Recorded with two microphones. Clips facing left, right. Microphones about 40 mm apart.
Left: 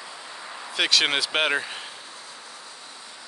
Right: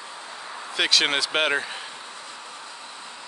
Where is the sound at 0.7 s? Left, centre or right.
Centre.